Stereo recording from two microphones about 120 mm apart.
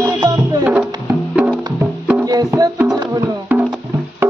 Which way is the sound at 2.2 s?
35° right (ahead or behind).